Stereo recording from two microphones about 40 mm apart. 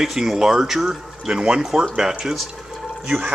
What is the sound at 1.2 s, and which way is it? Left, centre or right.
Speech, centre.